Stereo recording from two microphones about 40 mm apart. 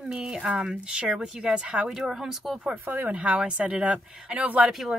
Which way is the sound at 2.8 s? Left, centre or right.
Right.